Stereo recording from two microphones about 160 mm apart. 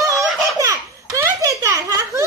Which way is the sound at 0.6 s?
20° right (ahead or behind).